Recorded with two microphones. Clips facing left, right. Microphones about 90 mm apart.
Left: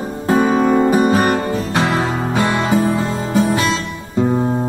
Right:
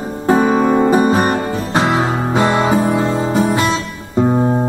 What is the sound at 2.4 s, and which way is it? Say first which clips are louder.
Music: right 3 dB; 40° right (ahead or behind).